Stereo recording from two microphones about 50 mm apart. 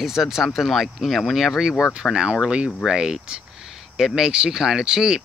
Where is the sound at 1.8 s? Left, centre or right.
Centre.